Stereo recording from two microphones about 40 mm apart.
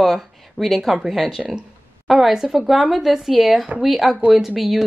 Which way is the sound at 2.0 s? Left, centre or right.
Centre.